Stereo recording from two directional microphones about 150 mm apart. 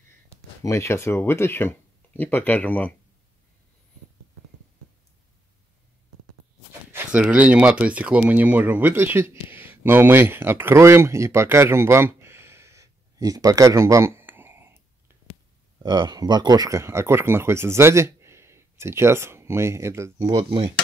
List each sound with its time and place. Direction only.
0.7 s speech: 20° left (ahead or behind)
6.9 s speech: 10° right (ahead or behind)
15.8 s speech: 25° right (ahead or behind)